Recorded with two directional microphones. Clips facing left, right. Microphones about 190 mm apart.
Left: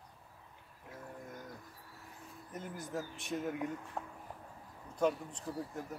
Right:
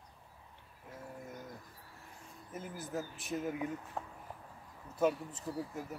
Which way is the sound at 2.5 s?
5° right (ahead or behind).